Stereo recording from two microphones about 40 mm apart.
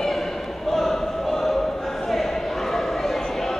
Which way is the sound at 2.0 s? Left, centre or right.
Centre.